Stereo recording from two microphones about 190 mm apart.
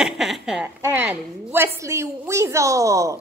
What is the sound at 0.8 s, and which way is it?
A woman's voice, 10° right (ahead or behind).